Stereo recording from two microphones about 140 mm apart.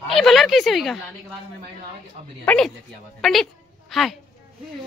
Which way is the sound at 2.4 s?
10° left (ahead or behind).